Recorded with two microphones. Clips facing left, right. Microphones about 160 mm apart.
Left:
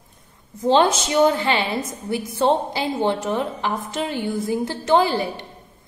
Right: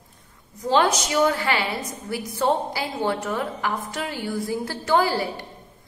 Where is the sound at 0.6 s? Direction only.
25° left (ahead or behind).